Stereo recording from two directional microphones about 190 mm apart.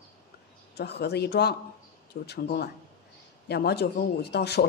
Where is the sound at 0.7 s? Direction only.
60° left (ahead or behind).